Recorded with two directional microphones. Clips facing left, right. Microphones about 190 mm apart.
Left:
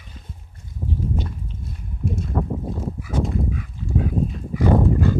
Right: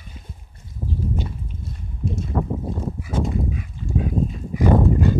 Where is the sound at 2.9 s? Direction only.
25° right (ahead or behind).